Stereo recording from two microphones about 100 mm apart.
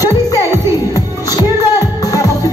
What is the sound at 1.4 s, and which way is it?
Music, 40° left (ahead or behind).